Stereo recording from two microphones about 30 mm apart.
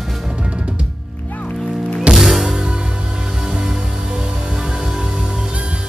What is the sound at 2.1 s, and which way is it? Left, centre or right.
Music, centre.